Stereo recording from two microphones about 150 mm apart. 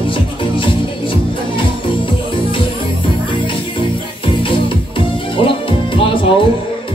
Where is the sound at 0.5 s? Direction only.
35° left (ahead or behind).